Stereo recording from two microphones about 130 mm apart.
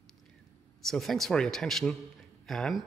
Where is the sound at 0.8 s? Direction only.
Centre (ahead or behind).